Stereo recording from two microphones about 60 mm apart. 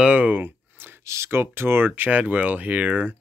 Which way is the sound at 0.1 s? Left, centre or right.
Right.